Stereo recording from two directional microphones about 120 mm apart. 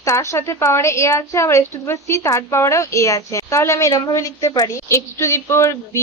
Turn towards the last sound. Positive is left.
turn(degrees=25)  # may be behind; listen again after turning